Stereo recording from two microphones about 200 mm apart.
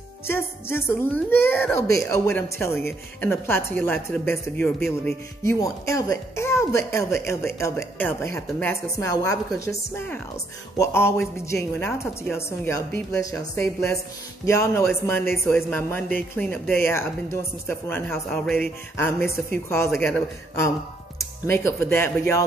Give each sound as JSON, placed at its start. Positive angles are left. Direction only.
{"t": 0.3, "sound": "speech", "side_deg": 10}